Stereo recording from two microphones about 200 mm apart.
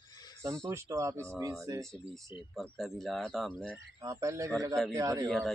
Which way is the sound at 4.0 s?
15° right (ahead or behind).